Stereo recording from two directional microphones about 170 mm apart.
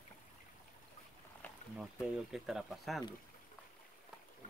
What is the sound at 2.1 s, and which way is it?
Speech, 5° right (ahead or behind).